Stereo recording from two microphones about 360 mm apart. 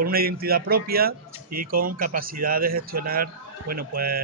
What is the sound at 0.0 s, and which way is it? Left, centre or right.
Speech, right.